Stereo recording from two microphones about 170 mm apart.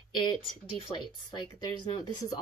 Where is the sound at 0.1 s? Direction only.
30° left (ahead or behind).